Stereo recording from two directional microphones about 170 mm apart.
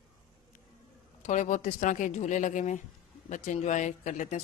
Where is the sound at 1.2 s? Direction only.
45° left (ahead or behind).